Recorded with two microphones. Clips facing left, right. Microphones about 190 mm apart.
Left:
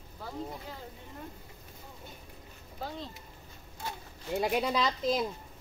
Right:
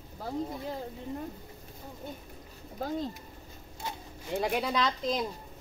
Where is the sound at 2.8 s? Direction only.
45° right (ahead or behind).